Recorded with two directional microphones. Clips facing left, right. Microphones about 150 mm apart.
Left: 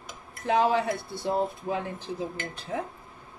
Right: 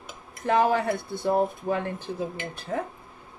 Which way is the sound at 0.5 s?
50° right (ahead or behind).